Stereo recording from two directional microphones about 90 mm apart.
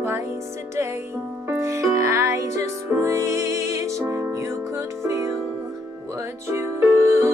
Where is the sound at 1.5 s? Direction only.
35° right (ahead or behind).